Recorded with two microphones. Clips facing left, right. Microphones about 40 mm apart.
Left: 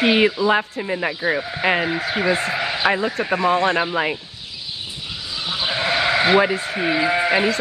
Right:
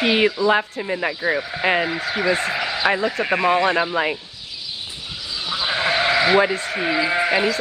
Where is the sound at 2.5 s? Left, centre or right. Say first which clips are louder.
Left 1 dB; left.